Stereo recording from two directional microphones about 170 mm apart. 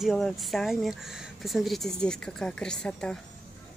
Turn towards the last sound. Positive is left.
turn(degrees=5)  # may be behind; listen again after turning